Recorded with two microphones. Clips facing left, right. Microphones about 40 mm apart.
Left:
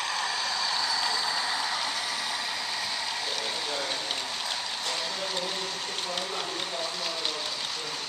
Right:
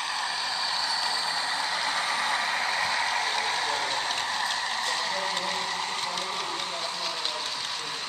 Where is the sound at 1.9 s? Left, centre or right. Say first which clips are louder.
Right 5 dB; right.